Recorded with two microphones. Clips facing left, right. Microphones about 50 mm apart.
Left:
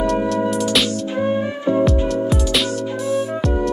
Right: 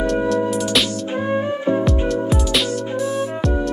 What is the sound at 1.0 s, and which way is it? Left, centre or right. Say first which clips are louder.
Music: left 1 dB; right.